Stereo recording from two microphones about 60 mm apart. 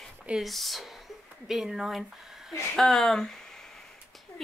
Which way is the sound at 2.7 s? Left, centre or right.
Centre.